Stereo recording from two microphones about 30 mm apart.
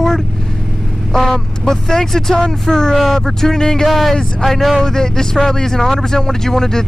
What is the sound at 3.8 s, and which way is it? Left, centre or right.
Speech, centre.